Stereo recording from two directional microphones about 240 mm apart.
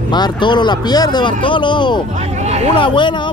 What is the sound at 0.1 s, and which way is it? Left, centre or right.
Speech, centre.